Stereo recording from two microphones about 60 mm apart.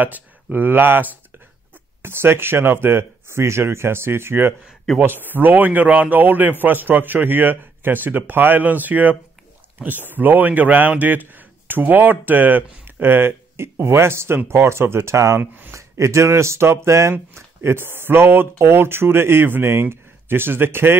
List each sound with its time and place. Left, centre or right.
0.0 s speech: right